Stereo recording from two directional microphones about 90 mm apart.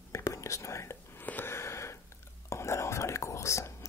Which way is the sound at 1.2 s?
25° left (ahead or behind).